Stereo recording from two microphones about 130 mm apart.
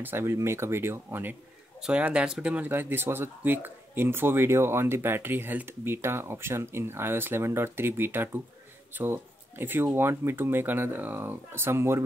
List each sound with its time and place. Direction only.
0.0 s speech: 20° right (ahead or behind)